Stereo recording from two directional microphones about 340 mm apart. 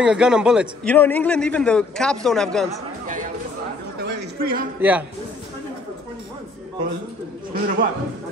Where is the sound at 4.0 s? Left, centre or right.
Right.